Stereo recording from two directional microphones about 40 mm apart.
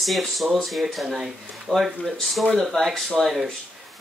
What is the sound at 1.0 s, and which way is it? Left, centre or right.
Speech, centre.